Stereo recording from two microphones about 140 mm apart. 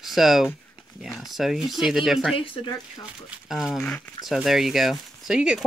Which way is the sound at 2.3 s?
40° left (ahead or behind).